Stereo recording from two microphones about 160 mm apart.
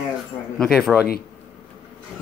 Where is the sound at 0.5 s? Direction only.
Centre (ahead or behind).